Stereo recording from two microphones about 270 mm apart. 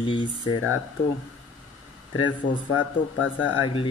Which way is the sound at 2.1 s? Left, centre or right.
Left.